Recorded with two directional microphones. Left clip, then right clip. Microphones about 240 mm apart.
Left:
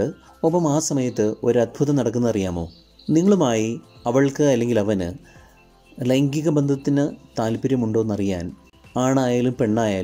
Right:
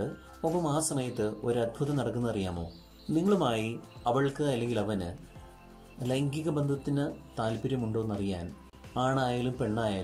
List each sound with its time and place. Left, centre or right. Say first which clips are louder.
0.0 s speech: left 11 dB; left